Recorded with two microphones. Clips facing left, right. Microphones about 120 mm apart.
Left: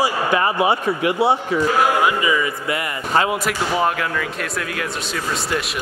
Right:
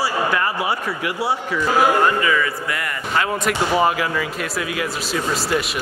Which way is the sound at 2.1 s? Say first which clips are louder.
Even; 15° left (ahead or behind).